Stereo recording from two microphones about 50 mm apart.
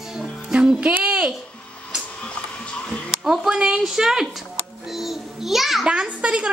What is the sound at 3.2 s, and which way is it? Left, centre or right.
A woman's voice, centre.